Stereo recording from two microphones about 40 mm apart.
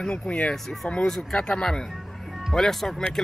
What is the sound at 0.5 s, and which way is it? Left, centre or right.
Speech, centre.